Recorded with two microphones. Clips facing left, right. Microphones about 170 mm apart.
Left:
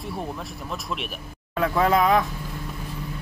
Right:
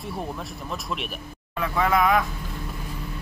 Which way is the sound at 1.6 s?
35° left (ahead or behind).